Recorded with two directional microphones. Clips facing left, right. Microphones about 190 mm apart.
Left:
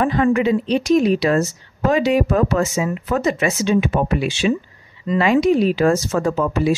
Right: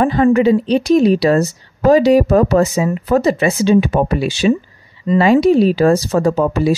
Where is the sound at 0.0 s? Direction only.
35° right (ahead or behind).